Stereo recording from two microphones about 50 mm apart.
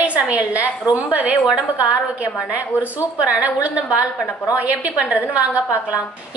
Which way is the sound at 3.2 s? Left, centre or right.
Right.